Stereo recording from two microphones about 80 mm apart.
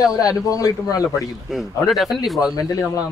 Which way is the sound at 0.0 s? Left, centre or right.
Left.